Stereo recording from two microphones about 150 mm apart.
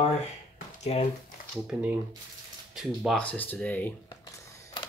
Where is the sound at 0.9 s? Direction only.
40° left (ahead or behind).